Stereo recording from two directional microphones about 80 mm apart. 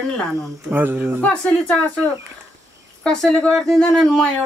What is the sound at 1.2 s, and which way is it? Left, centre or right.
Speech, centre.